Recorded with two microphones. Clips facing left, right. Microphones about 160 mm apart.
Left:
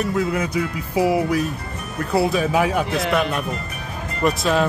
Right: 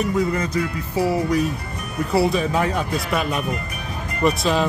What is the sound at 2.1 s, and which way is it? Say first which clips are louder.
Speech: left 1 dB; centre (ahead or behind).